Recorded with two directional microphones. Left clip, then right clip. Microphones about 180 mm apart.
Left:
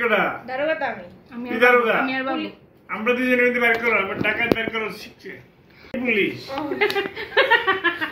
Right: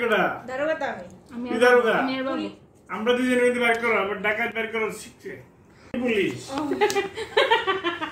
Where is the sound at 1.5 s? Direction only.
25° right (ahead or behind).